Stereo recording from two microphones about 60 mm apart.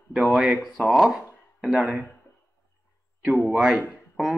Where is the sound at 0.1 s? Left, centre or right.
Right.